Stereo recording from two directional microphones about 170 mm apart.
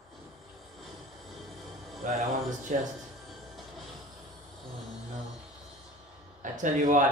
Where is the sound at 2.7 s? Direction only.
50° right (ahead or behind).